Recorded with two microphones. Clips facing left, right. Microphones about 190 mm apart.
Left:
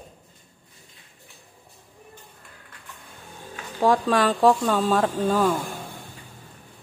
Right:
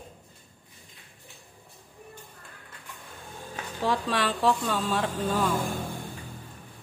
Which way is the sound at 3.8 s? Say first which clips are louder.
Left 7 dB; 45° left (ahead or behind).